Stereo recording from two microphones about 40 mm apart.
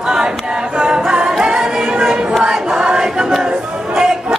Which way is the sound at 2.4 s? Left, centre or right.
Centre.